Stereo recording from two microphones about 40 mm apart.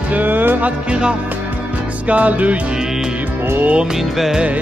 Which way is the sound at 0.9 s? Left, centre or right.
Right.